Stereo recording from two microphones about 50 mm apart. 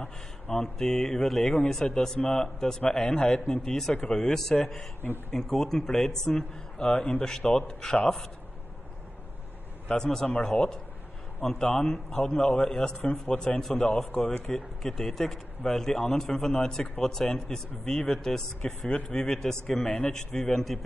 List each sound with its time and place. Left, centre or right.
0.5 s a man's voice: centre
9.9 s a man's voice: centre
10.2 s a man's voice: left
13.0 s a man's voice: left
14.8 s a man's voice: centre
18.9 s a man's voice: left; by 20.8 s centre